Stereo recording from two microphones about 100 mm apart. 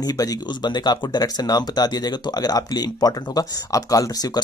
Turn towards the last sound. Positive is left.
turn(degrees=40)  # may be behind; listen again after turning